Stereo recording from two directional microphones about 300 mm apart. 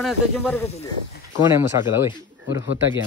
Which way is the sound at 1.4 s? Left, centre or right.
Centre.